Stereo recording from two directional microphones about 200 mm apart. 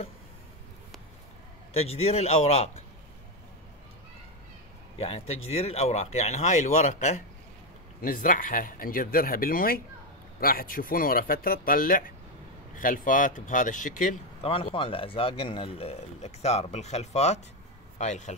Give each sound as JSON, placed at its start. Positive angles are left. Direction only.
{"t": 1.8, "sound": "speech", "side_deg": 30}
{"t": 4.9, "sound": "speech", "side_deg": 30}
{"t": 14.5, "sound": "speech", "side_deg": 25}